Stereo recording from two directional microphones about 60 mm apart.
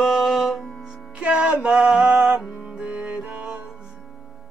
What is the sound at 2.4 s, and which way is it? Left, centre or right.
Music, centre.